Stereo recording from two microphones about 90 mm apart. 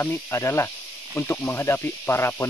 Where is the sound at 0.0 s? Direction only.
30° left (ahead or behind).